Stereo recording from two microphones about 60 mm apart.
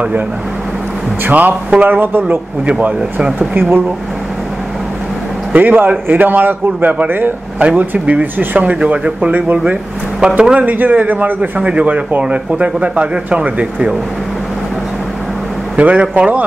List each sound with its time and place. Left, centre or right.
1.2 s a man's voice: right
5.5 s a man's voice: right
15.8 s a man's voice: right